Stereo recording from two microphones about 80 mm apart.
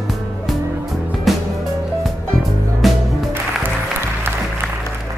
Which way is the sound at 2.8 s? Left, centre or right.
Centre.